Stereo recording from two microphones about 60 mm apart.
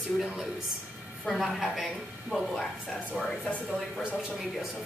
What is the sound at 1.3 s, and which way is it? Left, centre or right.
A woman's voice, centre.